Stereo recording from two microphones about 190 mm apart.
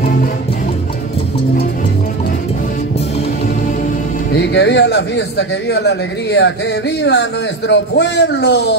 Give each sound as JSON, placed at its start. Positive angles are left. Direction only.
{"t": 4.3, "sound": "speech", "side_deg": 65}